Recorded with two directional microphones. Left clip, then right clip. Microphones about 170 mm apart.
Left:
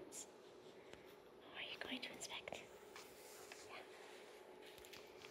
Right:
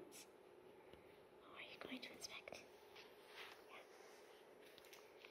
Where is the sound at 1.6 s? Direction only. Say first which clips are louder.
Left 6 dB; 15° right (ahead or behind).